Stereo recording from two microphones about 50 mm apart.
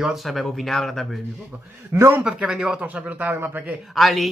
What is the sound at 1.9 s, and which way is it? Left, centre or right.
Speech, right.